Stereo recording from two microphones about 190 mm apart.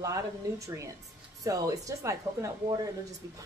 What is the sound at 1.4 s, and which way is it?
A woman's voice, 20° right (ahead or behind).